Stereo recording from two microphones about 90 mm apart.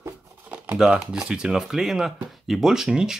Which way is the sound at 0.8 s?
5° right (ahead or behind).